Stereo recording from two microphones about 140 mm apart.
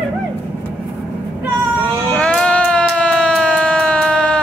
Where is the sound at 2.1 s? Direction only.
10° left (ahead or behind).